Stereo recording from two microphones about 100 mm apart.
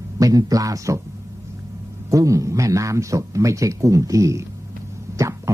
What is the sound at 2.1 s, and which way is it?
A man's voice, 35° right (ahead or behind).